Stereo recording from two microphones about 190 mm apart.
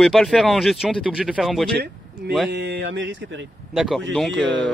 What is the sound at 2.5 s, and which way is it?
Speech, 65° right (ahead or behind).